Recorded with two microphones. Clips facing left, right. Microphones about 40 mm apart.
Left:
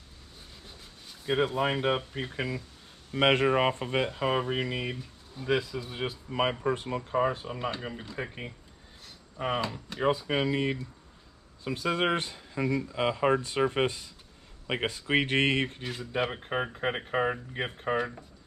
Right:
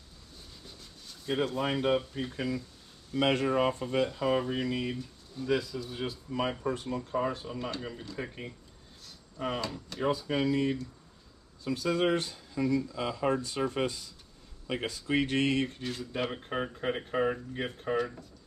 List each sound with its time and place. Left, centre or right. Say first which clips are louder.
0.7 s speech: even; left
15.8 s speech: left 3 dB; centre